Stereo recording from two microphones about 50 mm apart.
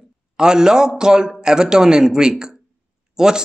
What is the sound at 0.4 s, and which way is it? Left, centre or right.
Speech, centre.